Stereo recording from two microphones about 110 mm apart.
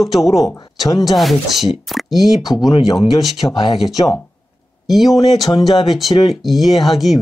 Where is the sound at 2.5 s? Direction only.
35° left (ahead or behind).